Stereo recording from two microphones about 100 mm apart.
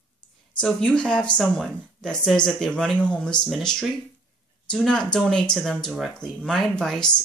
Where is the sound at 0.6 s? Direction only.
10° left (ahead or behind).